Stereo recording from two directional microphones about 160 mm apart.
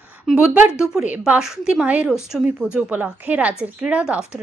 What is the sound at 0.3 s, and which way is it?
A woman's voice, 5° right (ahead or behind).